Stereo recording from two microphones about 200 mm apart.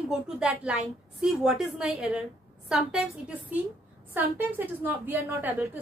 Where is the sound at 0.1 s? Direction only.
5° right (ahead or behind).